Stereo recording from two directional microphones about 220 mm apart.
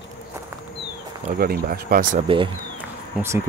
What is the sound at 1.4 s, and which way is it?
Speech, 45° right (ahead or behind).